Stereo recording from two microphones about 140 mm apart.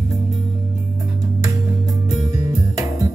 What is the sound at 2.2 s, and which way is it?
Music, 20° right (ahead or behind).